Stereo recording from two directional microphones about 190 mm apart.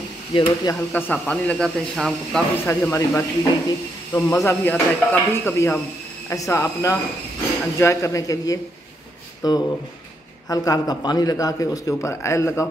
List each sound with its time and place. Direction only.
0.3 s speech: 20° left (ahead or behind); by 2.4 s centre (ahead or behind)
2.6 s a man's voice: 15° left (ahead or behind)